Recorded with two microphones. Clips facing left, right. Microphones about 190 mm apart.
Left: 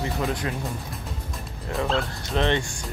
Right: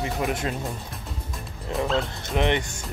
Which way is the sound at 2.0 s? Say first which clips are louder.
Even; 20° right (ahead or behind).